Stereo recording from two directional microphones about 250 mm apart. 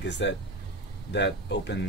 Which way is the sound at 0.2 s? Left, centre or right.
Left.